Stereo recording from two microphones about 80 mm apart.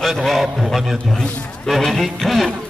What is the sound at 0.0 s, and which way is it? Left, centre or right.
Speech, centre.